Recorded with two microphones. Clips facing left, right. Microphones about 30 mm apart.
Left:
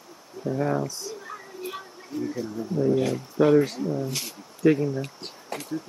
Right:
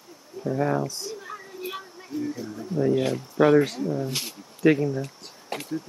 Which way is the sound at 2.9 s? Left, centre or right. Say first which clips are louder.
Even; right.